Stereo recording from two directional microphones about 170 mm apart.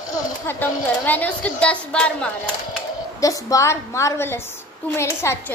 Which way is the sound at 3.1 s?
20° left (ahead or behind).